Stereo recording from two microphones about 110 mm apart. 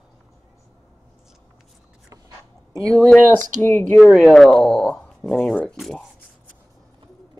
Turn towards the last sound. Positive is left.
turn(degrees=0)  # may be behind; listen again after turning